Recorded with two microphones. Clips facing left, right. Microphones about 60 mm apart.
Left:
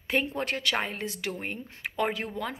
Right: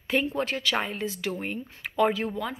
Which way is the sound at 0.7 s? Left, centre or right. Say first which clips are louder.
Right 2 dB; left.